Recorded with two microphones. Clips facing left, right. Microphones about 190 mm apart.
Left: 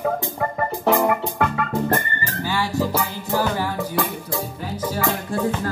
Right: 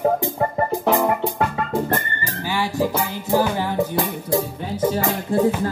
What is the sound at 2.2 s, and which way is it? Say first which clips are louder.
Music: even; 15° right (ahead or behind).